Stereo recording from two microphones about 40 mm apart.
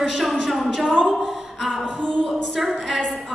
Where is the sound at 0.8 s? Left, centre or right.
Centre.